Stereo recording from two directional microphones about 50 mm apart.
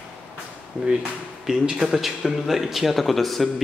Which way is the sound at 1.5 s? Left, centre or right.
Centre.